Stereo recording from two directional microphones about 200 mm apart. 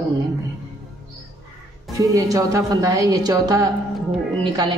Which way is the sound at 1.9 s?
15° right (ahead or behind).